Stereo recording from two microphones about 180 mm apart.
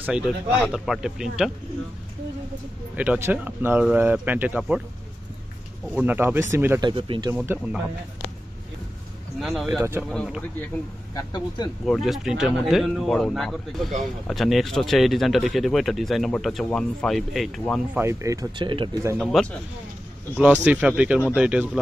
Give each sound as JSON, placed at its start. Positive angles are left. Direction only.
{"t": 0.0, "sound": "speech", "side_deg": -5}
{"t": 3.0, "sound": "speech", "side_deg": -10}
{"t": 5.9, "sound": "speech", "side_deg": -10}
{"t": 6.9, "sound": "speech", "side_deg": -25}
{"t": 7.3, "sound": "speech", "side_deg": -10}
{"t": 9.4, "sound": "speech", "side_deg": 0}
{"t": 9.8, "sound": "speech", "side_deg": -15}
{"t": 10.1, "sound": "speech", "side_deg": 0}
{"t": 11.1, "sound": "speech", "side_deg": 25}
{"t": 11.8, "sound": "speech", "side_deg": 0}
{"t": 17.9, "sound": "speech", "side_deg": -15}
{"t": 19.1, "sound": "speech", "side_deg": 0}
{"t": 20.6, "sound": "speech", "side_deg": -5}